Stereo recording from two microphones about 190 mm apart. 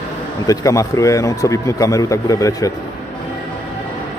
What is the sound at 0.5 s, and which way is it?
A man's voice, 15° left (ahead or behind).